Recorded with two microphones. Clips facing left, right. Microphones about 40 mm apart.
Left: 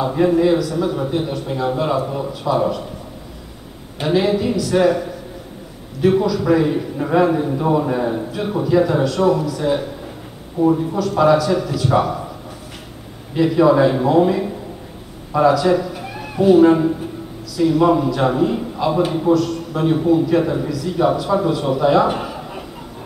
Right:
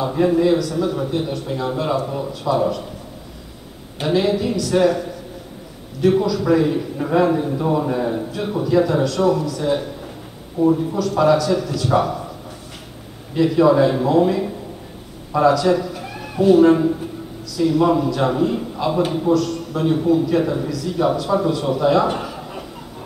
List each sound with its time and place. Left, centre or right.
0.0 s a man's voice: centre
4.0 s a man's voice: centre
13.3 s a man's voice: centre